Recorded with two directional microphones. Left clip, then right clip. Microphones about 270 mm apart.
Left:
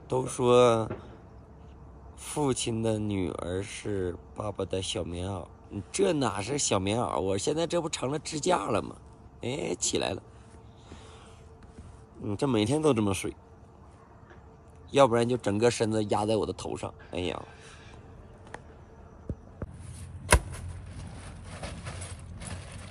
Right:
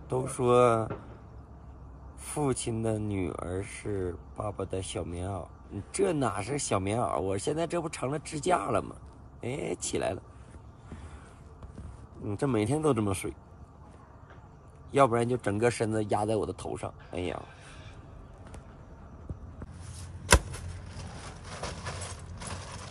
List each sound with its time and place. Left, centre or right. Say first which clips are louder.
0.1 s speech: left 2 dB; centre
2.2 s speech: left 2 dB; centre
12.3 s speech: left 2 dB; centre
14.9 s speech: left 2 dB; centre